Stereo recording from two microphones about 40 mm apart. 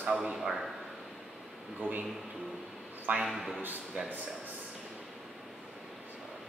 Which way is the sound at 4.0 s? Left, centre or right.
Right.